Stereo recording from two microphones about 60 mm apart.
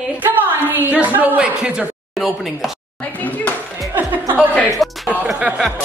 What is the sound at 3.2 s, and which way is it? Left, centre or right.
Speech, left.